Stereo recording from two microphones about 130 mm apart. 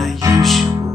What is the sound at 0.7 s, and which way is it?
Music, 25° right (ahead or behind).